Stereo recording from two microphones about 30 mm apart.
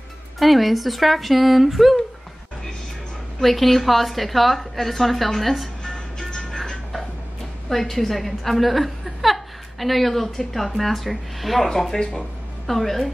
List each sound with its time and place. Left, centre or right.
0.4 s a woman's voice: centre
3.3 s a woman's voice: centre
6.1 s music: centre
6.7 s music: centre
7.7 s a woman's voice: centre